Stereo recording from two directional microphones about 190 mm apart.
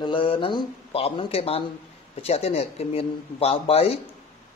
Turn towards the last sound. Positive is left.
turn(degrees=30)  # may be behind; listen again after turning